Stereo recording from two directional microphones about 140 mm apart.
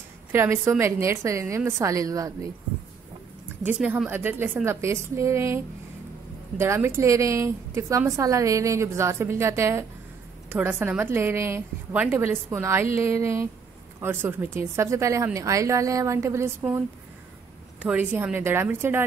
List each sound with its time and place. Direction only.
0.3 s a woman's voice: 15° right (ahead or behind)
3.6 s a woman's voice: 10° right (ahead or behind)
6.6 s a woman's voice: 20° right (ahead or behind)
17.8 s a woman's voice: 10° right (ahead or behind)